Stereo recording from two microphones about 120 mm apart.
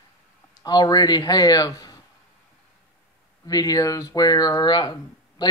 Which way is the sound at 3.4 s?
30° left (ahead or behind).